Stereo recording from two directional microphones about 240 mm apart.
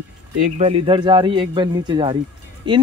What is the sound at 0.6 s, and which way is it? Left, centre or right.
Speech, right.